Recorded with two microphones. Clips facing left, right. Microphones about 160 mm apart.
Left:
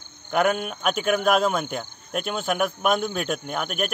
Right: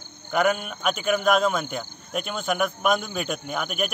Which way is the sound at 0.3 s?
Centre (ahead or behind).